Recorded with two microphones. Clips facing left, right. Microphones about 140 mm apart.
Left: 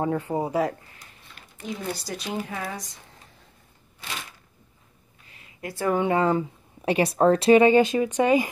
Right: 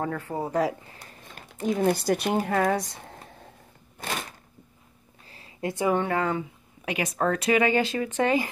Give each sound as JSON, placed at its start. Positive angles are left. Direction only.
{"t": 0.0, "sound": "speech", "side_deg": 20}
{"t": 1.2, "sound": "speech", "side_deg": -45}
{"t": 4.0, "sound": "a sound", "side_deg": -50}
{"t": 5.3, "sound": "a sound", "side_deg": -30}
{"t": 6.0, "sound": "speech", "side_deg": 20}
{"t": 6.3, "sound": "speech", "side_deg": 35}